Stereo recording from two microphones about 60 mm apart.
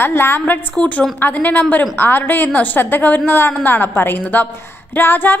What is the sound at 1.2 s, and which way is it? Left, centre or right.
A woman's voice, left.